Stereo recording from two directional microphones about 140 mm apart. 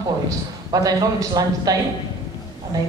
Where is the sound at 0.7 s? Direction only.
25° right (ahead or behind).